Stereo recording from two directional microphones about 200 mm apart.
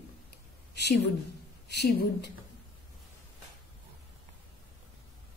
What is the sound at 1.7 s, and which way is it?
Speech, 55° left (ahead or behind).